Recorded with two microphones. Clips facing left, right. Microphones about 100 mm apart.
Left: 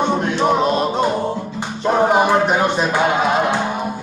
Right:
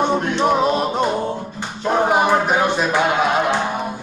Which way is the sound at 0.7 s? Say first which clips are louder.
Left 1 dB; 5° right (ahead or behind).